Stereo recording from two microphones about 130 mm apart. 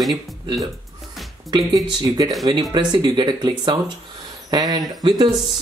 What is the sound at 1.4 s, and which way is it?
Speech, 30° right (ahead or behind).